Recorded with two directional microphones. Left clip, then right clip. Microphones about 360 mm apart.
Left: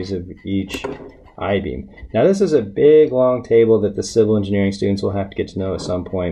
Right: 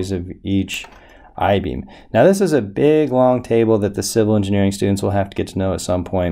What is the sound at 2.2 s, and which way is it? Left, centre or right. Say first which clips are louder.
Speech: even; right.